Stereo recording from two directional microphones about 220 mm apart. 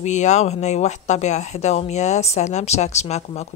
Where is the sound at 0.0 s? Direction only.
30° left (ahead or behind).